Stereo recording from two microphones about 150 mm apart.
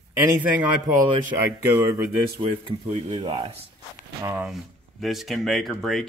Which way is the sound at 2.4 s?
40° right (ahead or behind).